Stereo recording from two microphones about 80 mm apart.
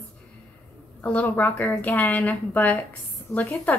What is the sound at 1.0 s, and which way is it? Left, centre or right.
Speech, centre.